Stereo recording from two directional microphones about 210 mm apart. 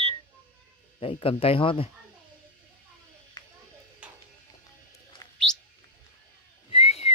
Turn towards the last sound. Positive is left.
turn(degrees=30)  # may be behind; listen again after turning